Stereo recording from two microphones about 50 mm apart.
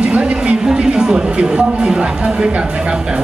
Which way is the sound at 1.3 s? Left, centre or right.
Centre.